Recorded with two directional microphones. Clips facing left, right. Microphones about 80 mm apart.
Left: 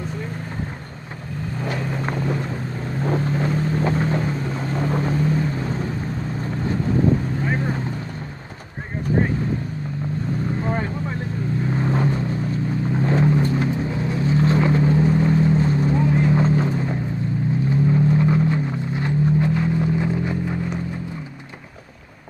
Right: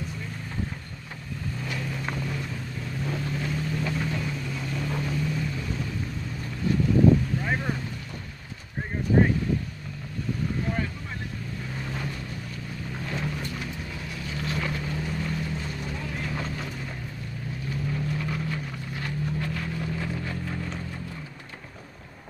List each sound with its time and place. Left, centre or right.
1.6 s vehicle: left
2.9 s boat: left
7.5 s vehicle: left
10.6 s vehicle: left
11.7 s boat: left
17.6 s a sound: left